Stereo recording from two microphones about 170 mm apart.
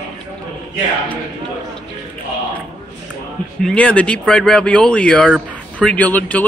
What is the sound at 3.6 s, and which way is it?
Speech, 5° left (ahead or behind).